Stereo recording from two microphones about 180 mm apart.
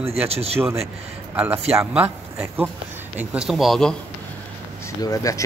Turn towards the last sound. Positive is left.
turn(degrees=20)  # may be behind; listen again after turning